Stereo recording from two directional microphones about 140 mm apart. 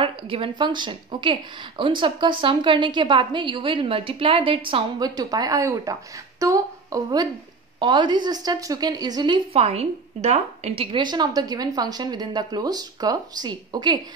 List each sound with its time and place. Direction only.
0.0 s a woman's voice: 40° right (ahead or behind); by 5.9 s 20° right (ahead or behind)
6.4 s a sound: 25° right (ahead or behind)
7.8 s a woman's voice: 35° right (ahead or behind)
9.6 s a woman's voice: 45° right (ahead or behind)
10.8 s a woman's voice: 35° right (ahead or behind)